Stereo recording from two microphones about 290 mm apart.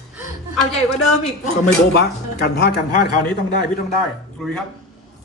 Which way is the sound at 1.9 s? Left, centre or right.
Left.